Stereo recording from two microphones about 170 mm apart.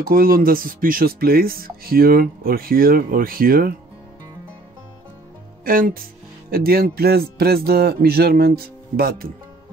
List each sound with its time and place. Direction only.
0.0 s speech: 60° right (ahead or behind)
5.7 s speech: 55° right (ahead or behind)